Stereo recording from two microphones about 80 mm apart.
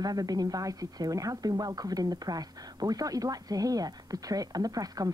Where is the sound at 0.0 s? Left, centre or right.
Right.